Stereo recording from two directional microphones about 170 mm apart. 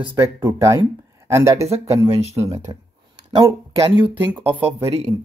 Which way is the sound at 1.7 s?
40° right (ahead or behind).